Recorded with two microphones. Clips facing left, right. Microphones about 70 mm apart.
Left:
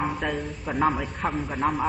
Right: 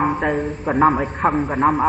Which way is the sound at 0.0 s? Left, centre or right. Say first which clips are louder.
Right 8 dB; right.